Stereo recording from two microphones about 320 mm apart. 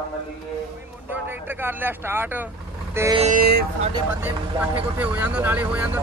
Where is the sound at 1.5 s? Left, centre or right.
Centre.